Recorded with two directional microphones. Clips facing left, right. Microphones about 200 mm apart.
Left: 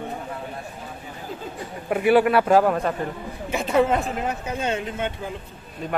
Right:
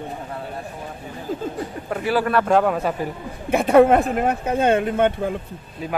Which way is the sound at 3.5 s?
55° right (ahead or behind).